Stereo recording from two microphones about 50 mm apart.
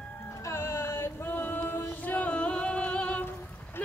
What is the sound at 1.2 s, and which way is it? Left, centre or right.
Music, left.